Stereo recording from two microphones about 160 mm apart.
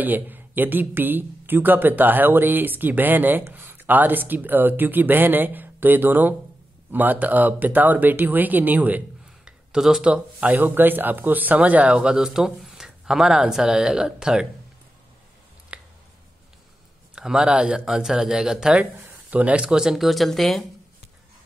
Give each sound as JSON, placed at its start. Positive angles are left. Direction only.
{"t": 0.0, "sound": "speech", "side_deg": -10}
{"t": 15.7, "sound": "a sound", "side_deg": -5}
{"t": 17.1, "sound": "speech", "side_deg": -5}